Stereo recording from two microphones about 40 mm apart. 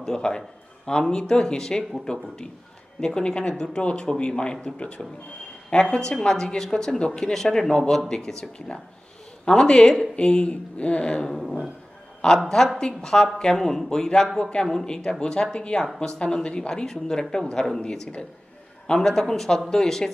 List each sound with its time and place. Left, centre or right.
0.0 s speech: centre
11.3 s a sound: centre
12.2 s a woman's voice: centre
18.9 s speech: centre